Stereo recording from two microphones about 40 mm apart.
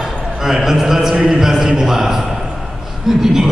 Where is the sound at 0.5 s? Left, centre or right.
Centre.